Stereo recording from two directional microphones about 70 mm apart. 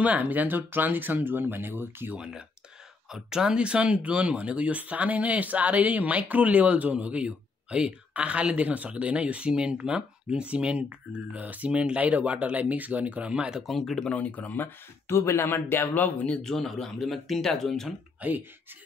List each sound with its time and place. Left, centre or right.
0.0 s speech: right
2.1 s speech: centre
13.6 s speech: centre
14.0 s speech: left
15.0 s speech: left
16.4 s speech: centre
18.2 s speech: right